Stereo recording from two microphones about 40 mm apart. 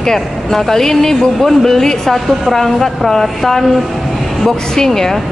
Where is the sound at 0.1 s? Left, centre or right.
Centre.